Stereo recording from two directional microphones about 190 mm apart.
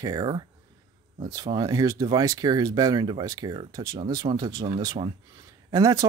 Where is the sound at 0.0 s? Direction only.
20° right (ahead or behind).